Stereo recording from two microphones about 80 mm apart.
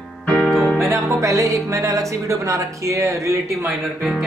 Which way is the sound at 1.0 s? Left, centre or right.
Right.